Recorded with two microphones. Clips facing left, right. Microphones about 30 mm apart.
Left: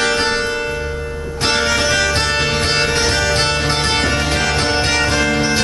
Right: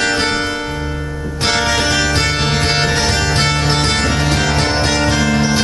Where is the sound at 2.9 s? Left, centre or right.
Centre.